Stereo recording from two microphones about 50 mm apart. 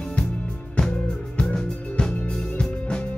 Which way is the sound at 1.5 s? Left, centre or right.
Centre.